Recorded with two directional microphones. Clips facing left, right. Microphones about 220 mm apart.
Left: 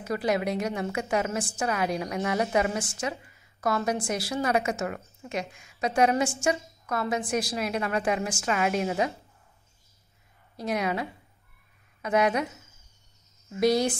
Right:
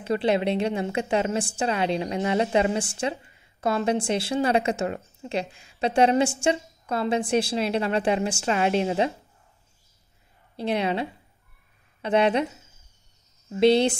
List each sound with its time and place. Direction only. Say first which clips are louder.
0.0 s a woman's voice: right 4 dB; 30° right (ahead or behind)
10.5 s a woman's voice: right 3 dB; 30° right (ahead or behind)
13.5 s a woman's voice: right 5 dB; 30° right (ahead or behind)